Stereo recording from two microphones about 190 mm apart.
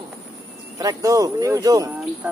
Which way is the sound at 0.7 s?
20° right (ahead or behind).